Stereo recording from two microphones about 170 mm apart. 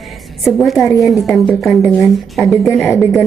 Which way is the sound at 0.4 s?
Centre (ahead or behind).